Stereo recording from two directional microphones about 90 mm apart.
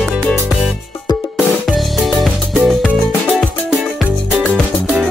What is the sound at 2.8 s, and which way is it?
Music, 20° left (ahead or behind).